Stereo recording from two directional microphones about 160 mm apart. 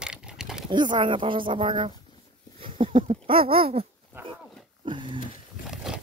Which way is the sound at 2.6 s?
35° right (ahead or behind).